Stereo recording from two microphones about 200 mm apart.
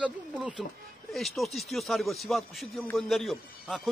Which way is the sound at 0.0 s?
5° right (ahead or behind).